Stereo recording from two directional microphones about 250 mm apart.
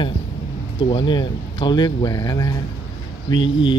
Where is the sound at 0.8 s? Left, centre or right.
Centre.